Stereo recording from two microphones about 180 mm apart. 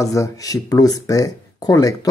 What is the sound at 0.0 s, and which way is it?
Speech, 15° left (ahead or behind).